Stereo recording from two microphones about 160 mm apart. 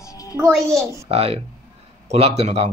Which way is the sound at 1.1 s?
40° right (ahead or behind).